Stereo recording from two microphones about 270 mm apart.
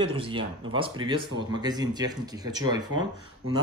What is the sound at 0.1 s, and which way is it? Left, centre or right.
Speech, centre.